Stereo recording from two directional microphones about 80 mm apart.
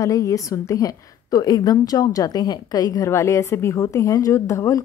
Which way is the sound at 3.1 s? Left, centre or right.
Left.